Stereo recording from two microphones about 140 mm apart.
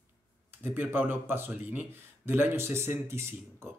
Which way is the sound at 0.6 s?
15° right (ahead or behind).